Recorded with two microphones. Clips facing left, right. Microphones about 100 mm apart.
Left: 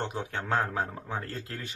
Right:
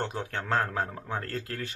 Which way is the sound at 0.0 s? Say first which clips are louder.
Right 1 dB; 15° left (ahead or behind).